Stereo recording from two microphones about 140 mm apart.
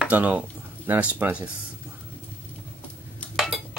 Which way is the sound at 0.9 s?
10° right (ahead or behind).